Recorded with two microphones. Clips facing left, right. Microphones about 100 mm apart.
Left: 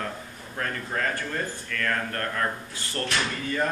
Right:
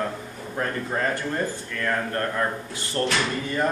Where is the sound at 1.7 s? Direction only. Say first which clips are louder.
Right 2 dB; 20° right (ahead or behind).